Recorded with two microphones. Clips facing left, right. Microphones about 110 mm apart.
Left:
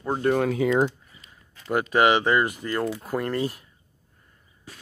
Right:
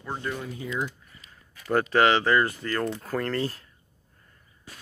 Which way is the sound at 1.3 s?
20° left (ahead or behind).